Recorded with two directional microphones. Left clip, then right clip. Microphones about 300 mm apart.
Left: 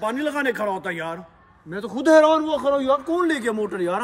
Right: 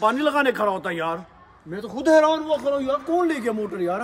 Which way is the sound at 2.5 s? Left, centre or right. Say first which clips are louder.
Left 1 dB; centre.